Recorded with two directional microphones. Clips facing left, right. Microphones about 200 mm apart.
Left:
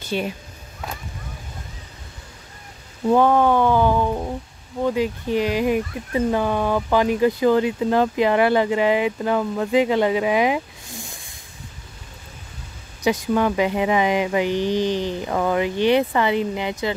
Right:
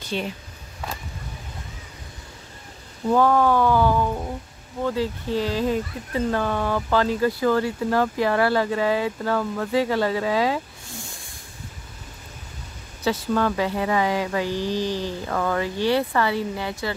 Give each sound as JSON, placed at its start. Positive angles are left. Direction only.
{"t": 0.1, "sound": "speech", "side_deg": 10}
{"t": 3.1, "sound": "a sound", "side_deg": 20}
{"t": 4.8, "sound": "speech", "side_deg": 15}
{"t": 13.0, "sound": "speech", "side_deg": 15}